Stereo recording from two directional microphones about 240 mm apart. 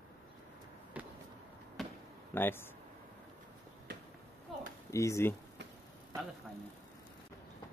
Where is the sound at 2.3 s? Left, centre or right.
Centre.